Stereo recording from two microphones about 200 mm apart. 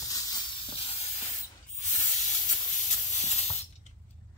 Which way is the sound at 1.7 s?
35° left (ahead or behind).